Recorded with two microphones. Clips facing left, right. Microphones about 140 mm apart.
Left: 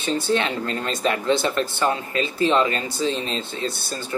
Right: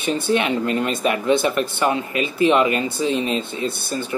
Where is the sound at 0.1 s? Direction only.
15° right (ahead or behind).